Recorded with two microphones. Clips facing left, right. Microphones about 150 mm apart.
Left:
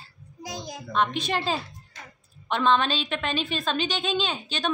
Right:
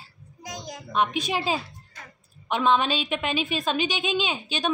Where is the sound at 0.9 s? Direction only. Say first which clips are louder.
Right 1 dB; 10° right (ahead or behind).